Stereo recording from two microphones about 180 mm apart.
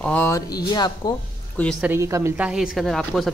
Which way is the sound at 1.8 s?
15° right (ahead or behind).